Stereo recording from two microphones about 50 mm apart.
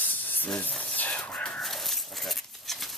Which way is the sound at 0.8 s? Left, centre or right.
Left.